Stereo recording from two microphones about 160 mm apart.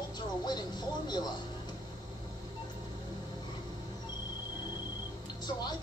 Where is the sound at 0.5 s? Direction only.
25° left (ahead or behind).